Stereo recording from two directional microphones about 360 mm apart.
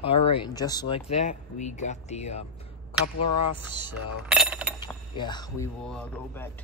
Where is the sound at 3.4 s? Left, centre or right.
Left.